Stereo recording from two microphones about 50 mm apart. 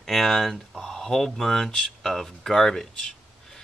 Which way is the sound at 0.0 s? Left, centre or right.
Centre.